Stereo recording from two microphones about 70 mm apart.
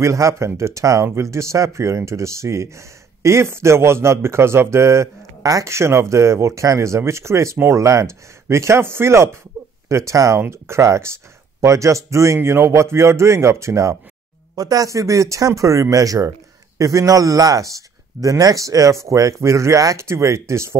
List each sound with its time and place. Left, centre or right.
0.0 s speech: right
14.5 s speech: right